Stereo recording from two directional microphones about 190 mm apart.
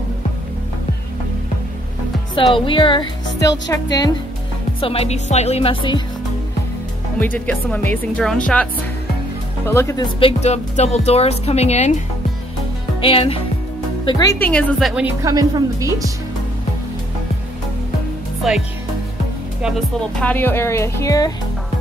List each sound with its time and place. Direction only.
2.5 s speech: 25° left (ahead or behind)
7.2 s speech: 10° left (ahead or behind)
9.7 s speech: 15° left (ahead or behind)
10.2 s speech: 35° left (ahead or behind)
13.0 s speech: 30° left (ahead or behind)
14.4 s a woman's voice: 5° left (ahead or behind)
15.2 s a woman's voice: 20° right (ahead or behind)
18.4 s a woman's voice: centre (ahead or behind)
20.2 s speech: 10° left (ahead or behind)